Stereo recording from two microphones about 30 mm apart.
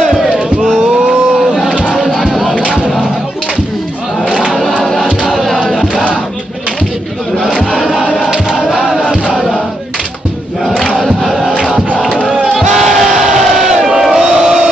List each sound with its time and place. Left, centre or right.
5.3 s music: centre
5.7 s crowd: centre
7.7 s crowd: centre
8.5 s choir: centre
8.7 s music: centre
11.0 s crowd: centre
12.5 s crowd: centre
13.7 s crowd: right
14.1 s music: centre